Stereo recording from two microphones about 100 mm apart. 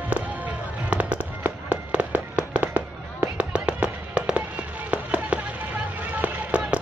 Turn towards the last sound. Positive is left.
turn(degrees=-15)  # may be behind; listen again after turning